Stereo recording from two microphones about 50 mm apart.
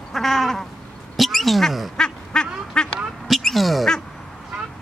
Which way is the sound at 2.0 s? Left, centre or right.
Centre.